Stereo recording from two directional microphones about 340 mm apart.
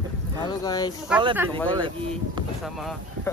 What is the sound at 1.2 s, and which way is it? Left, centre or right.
Speech, centre.